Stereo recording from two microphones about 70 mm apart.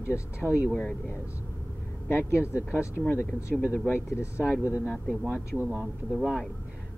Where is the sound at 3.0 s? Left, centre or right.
Centre.